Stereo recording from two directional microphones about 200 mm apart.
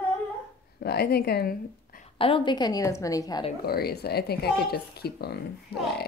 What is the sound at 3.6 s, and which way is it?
A woman's voice, 50° left (ahead or behind).